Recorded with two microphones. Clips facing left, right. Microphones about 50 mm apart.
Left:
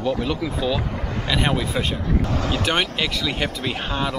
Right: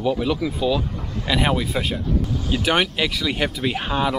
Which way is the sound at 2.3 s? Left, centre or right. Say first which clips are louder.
Left 1 dB; left.